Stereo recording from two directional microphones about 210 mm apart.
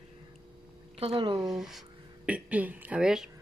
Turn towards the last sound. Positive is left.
turn(degrees=-5)  # may be behind; listen again after turning